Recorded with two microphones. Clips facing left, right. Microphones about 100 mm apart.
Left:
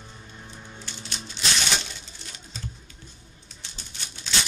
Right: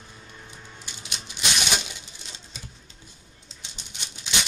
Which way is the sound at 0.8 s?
15° right (ahead or behind).